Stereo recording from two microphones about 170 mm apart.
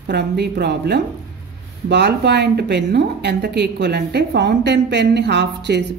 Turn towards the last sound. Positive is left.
turn(degrees=-85)